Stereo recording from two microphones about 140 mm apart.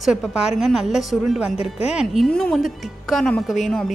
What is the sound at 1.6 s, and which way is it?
Speech, 45° left (ahead or behind).